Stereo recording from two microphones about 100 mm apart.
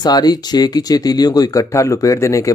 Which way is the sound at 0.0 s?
45° left (ahead or behind).